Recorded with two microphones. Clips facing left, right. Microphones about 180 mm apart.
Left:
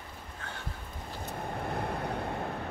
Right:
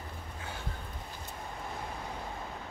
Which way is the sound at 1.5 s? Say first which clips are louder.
Left 7 dB; 60° left (ahead or behind).